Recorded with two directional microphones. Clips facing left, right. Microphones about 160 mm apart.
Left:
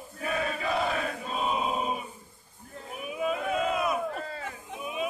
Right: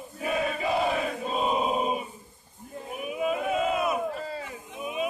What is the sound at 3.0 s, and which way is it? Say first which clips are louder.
Crowd: right 2 dB; 5° right (ahead or behind).